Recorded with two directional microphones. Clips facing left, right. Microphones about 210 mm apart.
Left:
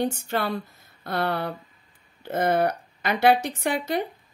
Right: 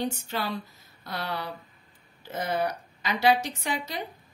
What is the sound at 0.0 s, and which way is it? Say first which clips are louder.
Speech: left 5 dB; 55° left (ahead or behind).